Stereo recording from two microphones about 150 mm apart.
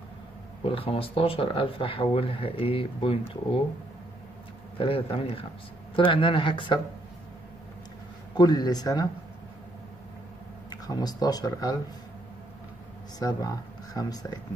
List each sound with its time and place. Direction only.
0.7 s speech: 40° left (ahead or behind)
4.7 s speech: 35° left (ahead or behind)
8.4 s speech: 25° left (ahead or behind)
10.7 s speech: 25° left (ahead or behind)
13.2 s speech: 25° left (ahead or behind)